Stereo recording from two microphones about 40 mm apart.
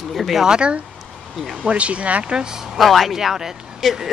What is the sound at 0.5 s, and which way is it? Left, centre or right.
Speech, right.